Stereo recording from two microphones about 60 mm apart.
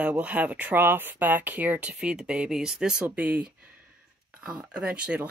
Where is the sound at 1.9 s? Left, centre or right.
Centre.